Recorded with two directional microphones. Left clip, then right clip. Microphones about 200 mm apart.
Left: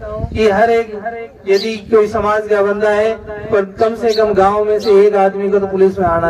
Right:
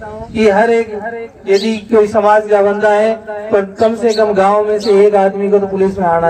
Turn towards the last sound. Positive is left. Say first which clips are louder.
# even
turn(degrees=40)  # may be behind; listen again after turning